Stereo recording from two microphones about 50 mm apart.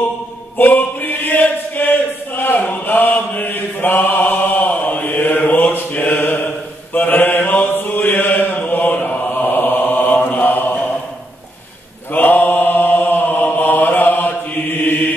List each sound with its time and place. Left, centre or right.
0.6 s chant: left
9.0 s mantra: left
12.1 s mantra: left